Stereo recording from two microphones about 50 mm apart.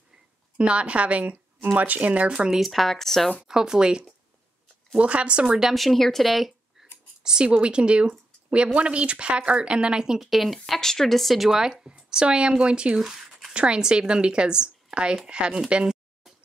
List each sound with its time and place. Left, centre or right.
0.6 s speech: right
2.3 s speech: centre
2.6 s speech: centre
3.4 s speech: centre
5.6 s speech: centre
7.2 s speech: centre
13.0 s a sound: centre
13.5 s a woman's voice: right